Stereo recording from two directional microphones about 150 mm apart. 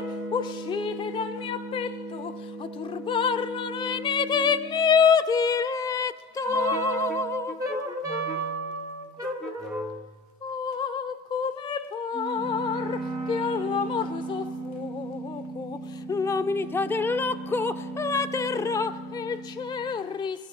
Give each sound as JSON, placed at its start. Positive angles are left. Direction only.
{"t": 0.3, "sound": "music", "side_deg": 30}
{"t": 2.9, "sound": "music", "side_deg": 35}
{"t": 11.7, "sound": "music", "side_deg": 30}
{"t": 16.1, "sound": "music", "side_deg": 20}